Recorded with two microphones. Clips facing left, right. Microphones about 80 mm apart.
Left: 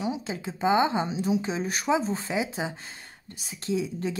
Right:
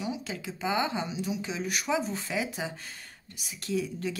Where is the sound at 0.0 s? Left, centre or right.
Left.